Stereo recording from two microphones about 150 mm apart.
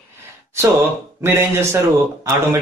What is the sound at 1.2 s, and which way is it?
Speech, 15° right (ahead or behind).